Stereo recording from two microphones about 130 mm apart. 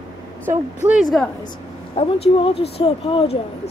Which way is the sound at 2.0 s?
45° left (ahead or behind).